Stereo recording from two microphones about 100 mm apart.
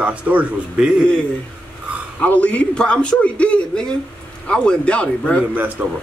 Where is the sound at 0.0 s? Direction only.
15° right (ahead or behind).